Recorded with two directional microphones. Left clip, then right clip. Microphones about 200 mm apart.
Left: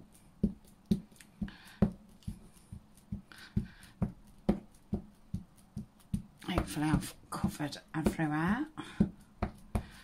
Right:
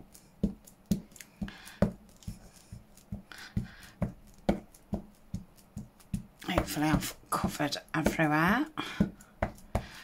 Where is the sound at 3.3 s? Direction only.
Centre (ahead or behind).